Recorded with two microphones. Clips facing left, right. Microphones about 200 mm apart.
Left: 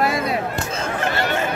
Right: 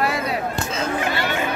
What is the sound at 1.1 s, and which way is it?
Chatter, 45° left (ahead or behind).